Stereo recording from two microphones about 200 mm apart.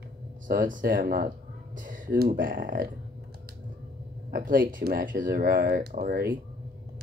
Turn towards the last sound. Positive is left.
turn(degrees=-50)  # may be behind; listen again after turning